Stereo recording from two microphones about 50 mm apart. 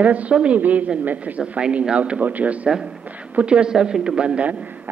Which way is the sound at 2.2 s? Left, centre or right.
Right.